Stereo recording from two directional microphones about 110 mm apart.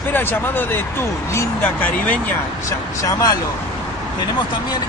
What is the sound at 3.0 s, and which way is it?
Speech, 35° left (ahead or behind).